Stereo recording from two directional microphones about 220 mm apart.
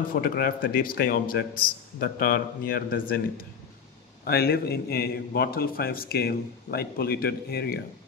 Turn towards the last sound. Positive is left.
turn(degrees=45)  # may be behind; listen again after turning